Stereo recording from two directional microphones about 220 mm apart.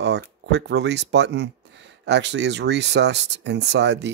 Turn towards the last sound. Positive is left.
turn(degrees=-50)  # may be behind; listen again after turning